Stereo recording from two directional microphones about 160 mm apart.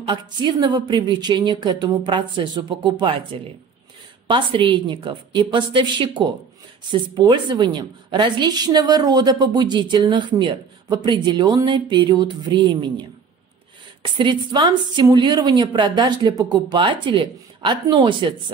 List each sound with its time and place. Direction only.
0.0 s a woman's voice: 30° right (ahead or behind)
4.3 s a woman's voice: 30° right (ahead or behind)
14.0 s a woman's voice: 30° right (ahead or behind)